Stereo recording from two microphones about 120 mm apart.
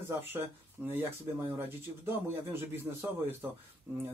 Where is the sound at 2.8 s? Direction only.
15° right (ahead or behind).